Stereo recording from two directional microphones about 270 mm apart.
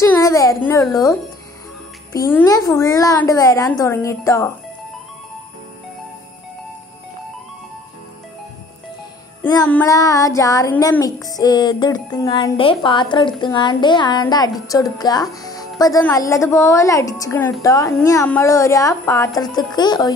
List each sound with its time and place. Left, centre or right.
0.0 s a sound: centre
2.1 s speech: centre
9.4 s speech: centre